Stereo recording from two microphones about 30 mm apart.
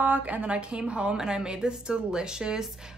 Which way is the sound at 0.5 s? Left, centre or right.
Right.